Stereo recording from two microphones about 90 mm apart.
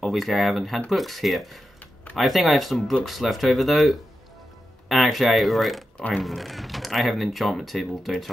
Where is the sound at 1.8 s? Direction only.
20° left (ahead or behind).